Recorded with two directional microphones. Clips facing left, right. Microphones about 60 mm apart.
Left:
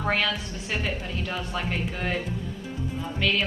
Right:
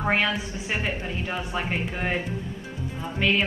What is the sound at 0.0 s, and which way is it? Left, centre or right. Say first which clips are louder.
A woman's voice: right 2 dB; right.